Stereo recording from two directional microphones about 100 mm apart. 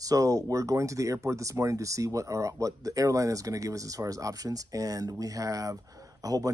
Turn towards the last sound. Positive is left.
turn(degrees=-35)  # may be behind; listen again after turning